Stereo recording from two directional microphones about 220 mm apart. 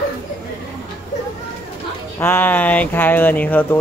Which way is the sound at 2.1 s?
10° left (ahead or behind).